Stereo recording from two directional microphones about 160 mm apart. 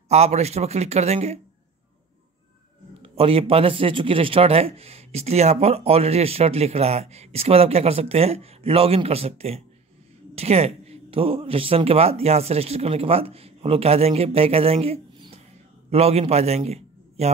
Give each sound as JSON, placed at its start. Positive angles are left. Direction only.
{"t": 0.1, "sound": "a man's voice", "side_deg": -40}
{"t": 3.0, "sound": "a man's voice", "side_deg": -35}